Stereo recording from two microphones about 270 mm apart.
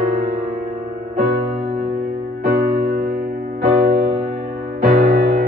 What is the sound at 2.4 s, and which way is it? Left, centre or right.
Music, right.